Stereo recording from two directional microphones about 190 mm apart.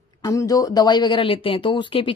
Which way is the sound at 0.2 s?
20° left (ahead or behind).